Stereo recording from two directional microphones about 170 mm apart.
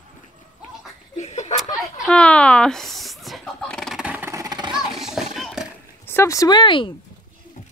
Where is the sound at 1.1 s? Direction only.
40° left (ahead or behind).